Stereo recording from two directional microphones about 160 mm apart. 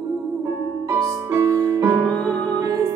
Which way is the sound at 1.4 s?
20° right (ahead or behind).